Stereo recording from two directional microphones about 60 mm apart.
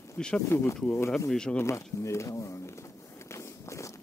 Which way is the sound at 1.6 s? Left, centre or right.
Left.